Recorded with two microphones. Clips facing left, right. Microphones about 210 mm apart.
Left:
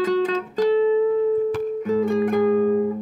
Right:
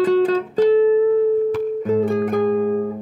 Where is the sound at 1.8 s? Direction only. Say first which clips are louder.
Right 1 dB; 25° right (ahead or behind).